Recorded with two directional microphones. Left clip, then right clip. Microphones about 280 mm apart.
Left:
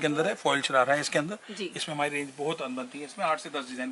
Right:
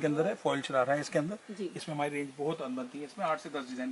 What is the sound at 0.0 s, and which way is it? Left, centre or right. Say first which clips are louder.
A woman's voice: left 3 dB; centre.